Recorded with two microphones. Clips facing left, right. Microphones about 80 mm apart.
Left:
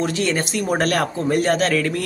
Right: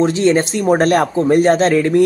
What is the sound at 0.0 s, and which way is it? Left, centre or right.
Speech, right.